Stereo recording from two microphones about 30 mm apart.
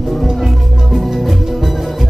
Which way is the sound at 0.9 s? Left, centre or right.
Centre.